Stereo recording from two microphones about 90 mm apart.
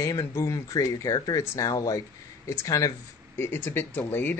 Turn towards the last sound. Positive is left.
turn(degrees=20)  # may be behind; listen again after turning